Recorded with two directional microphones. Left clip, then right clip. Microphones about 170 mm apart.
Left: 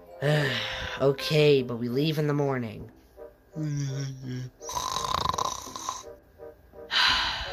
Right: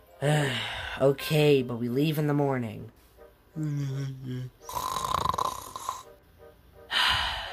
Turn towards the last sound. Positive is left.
turn(degrees=0)  # may be behind; listen again after turning